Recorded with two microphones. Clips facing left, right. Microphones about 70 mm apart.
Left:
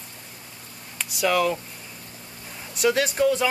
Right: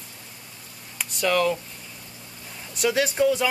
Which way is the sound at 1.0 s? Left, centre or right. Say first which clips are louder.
Even; centre.